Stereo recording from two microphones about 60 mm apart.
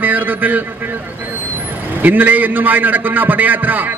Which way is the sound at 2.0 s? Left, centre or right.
Right.